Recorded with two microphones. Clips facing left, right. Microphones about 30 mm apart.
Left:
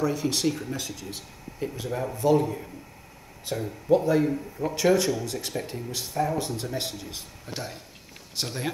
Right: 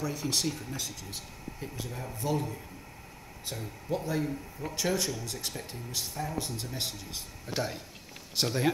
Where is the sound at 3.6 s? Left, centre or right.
Left.